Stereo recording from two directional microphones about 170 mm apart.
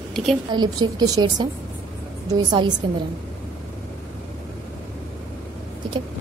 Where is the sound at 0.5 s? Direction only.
25° right (ahead or behind).